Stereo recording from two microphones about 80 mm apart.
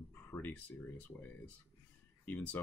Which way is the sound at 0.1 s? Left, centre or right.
Left.